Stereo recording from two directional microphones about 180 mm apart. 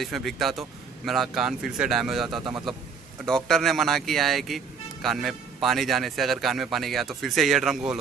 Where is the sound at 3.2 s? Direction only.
5° left (ahead or behind).